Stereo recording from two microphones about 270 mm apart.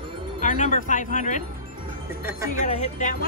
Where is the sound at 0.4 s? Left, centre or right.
Left.